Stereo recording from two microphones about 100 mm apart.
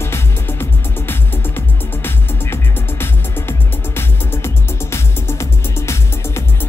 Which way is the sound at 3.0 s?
25° left (ahead or behind).